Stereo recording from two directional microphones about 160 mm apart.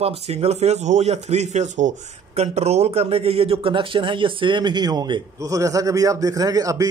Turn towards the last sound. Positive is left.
turn(degrees=-20)  # may be behind; listen again after turning